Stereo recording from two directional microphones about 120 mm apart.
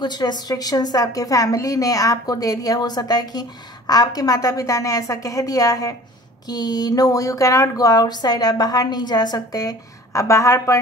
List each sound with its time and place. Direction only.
0.0 s a woman's voice: 35° left (ahead or behind)